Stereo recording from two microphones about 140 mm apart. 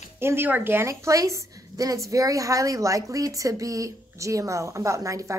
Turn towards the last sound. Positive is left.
turn(degrees=-25)  # may be behind; listen again after turning